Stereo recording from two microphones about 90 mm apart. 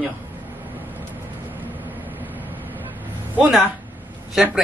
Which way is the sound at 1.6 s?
20° right (ahead or behind).